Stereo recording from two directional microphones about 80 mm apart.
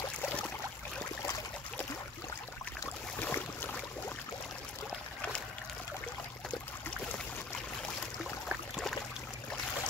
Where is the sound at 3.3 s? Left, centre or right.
Left.